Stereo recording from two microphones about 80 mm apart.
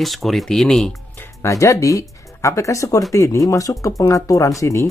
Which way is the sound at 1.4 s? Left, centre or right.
Left.